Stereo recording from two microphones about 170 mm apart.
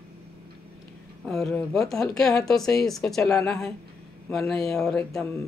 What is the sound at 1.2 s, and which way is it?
Speech, 5° left (ahead or behind).